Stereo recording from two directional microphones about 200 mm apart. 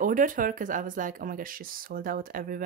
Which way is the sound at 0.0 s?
40° right (ahead or behind).